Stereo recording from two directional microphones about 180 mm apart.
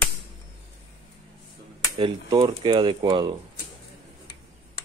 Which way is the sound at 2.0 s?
30° right (ahead or behind).